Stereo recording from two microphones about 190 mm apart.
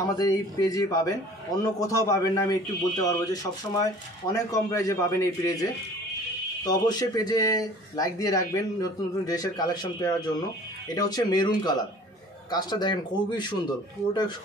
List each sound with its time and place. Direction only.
0.0 s a man's voice: 20° left (ahead or behind)